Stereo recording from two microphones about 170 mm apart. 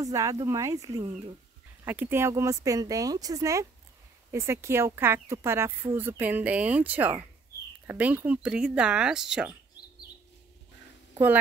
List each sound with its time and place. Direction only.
0.0 s speech: 20° right (ahead or behind); by 9.5 s 5° right (ahead or behind)